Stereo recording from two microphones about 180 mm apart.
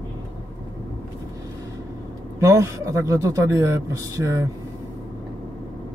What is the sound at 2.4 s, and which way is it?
Speech, 15° right (ahead or behind).